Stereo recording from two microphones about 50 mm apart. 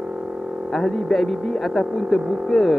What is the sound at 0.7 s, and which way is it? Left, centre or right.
Hum, centre.